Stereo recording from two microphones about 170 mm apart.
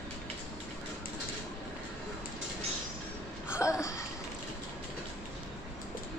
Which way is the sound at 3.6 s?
20° left (ahead or behind).